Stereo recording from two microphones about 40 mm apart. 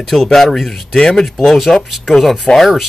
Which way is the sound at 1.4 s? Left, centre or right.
Centre.